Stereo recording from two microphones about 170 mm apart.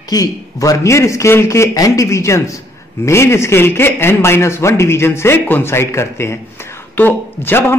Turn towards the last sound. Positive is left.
turn(degrees=15)  # may be behind; listen again after turning